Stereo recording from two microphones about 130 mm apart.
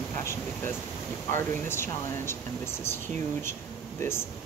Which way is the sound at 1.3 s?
20° left (ahead or behind).